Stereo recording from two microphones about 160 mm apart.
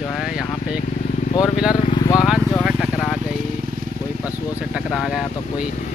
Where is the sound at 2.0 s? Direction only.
25° left (ahead or behind).